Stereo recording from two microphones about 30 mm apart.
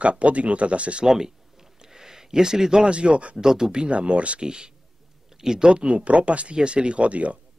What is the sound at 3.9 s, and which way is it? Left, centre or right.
Speech, right.